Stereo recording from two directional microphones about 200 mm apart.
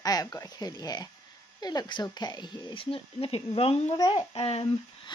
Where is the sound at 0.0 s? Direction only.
20° left (ahead or behind).